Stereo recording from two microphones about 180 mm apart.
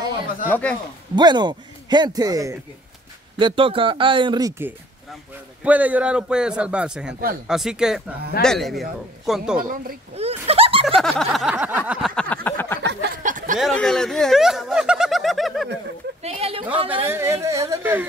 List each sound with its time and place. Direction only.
0.5 s speech: 10° left (ahead or behind)
1.1 s a man's voice: 25° right (ahead or behind); by 9.4 s centre (ahead or behind)
9.6 s speech: 50° right (ahead or behind)
10.1 s speech: 35° right (ahead or behind)
11.0 s a man's voice: centre (ahead or behind)
12.2 s a sound: 10° left (ahead or behind)
13.1 s a sound: 45° right (ahead or behind)
13.6 s speech: centre (ahead or behind)
16.2 s speech: 35° right (ahead or behind)
17.0 s speech: 15° right (ahead or behind)